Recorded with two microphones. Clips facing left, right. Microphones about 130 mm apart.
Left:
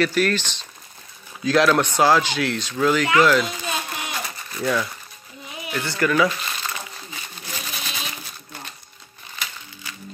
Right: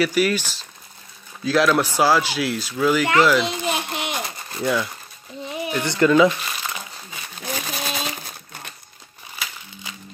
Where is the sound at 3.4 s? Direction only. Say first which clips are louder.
Right 3 dB; 20° right (ahead or behind).